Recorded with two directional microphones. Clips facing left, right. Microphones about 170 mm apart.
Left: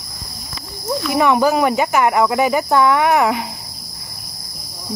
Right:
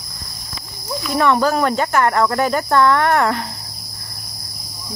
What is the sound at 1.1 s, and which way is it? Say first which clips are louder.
Speech: left 1 dB; 10° left (ahead or behind).